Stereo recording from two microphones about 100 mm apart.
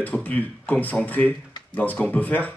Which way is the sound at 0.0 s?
15° left (ahead or behind).